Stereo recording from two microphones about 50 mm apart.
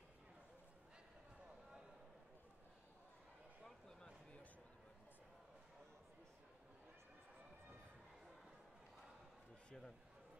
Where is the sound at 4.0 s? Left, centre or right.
Left.